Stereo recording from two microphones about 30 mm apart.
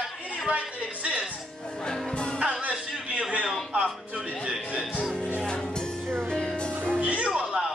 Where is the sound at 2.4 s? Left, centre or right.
Right.